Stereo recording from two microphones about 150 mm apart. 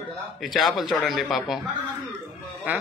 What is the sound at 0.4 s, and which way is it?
A man's voice, centre (ahead or behind).